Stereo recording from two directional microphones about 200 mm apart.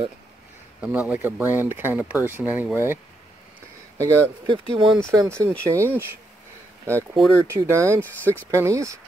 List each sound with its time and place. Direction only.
0.7 s speech: 10° right (ahead or behind)
4.0 s speech: 25° right (ahead or behind)
7.3 s speech: 15° right (ahead or behind)